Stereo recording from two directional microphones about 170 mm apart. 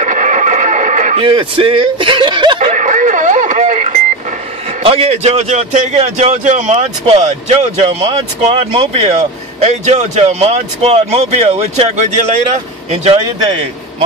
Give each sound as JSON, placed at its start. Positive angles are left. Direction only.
{"t": 0.0, "sound": "a sound", "side_deg": -50}
{"t": 1.2, "sound": "speech", "side_deg": -30}
{"t": 2.6, "sound": "radio", "side_deg": -45}
{"t": 4.8, "sound": "speech", "side_deg": -35}